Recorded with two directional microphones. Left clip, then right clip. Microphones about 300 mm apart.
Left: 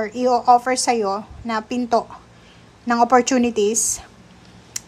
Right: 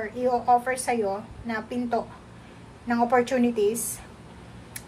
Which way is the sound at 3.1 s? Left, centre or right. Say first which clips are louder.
Left 4 dB; centre.